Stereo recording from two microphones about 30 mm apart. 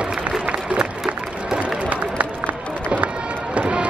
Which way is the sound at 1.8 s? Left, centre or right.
Right.